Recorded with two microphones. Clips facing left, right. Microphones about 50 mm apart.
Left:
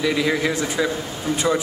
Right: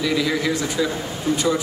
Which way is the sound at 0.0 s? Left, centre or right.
Left.